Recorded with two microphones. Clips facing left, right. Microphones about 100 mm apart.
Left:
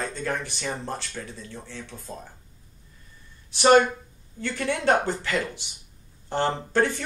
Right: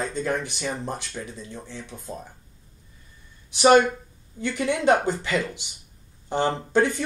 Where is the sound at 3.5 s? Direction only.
15° right (ahead or behind).